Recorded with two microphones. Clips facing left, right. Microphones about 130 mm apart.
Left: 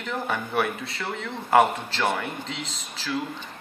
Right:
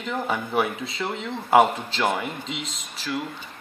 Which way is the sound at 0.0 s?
10° right (ahead or behind).